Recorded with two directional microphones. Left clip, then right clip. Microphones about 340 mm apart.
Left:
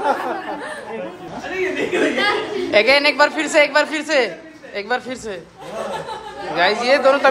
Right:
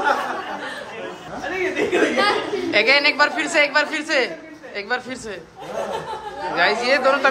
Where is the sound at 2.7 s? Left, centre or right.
Centre.